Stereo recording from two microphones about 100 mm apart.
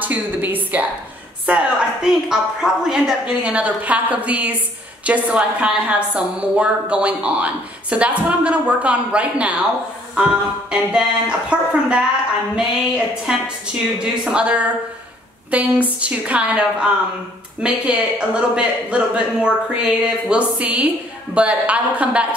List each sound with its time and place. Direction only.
0.0 s a woman's voice: 20° right (ahead or behind)